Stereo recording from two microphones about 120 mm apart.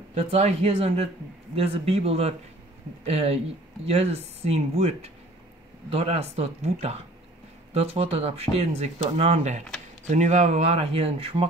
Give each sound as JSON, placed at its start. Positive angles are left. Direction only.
{"t": 0.1, "sound": "speech", "side_deg": -65}